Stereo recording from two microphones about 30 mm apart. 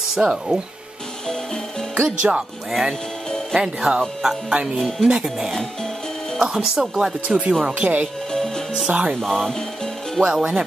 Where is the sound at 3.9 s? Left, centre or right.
Right.